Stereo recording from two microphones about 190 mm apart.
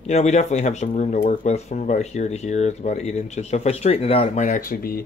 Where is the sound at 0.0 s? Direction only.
35° left (ahead or behind).